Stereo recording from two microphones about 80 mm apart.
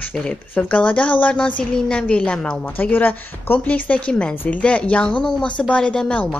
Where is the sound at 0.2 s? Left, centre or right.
Centre.